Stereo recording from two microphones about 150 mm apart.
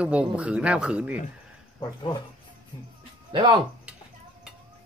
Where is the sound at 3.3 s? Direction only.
30° right (ahead or behind).